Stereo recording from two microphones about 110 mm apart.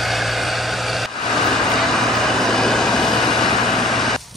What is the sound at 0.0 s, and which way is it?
Vehicle, centre (ahead or behind).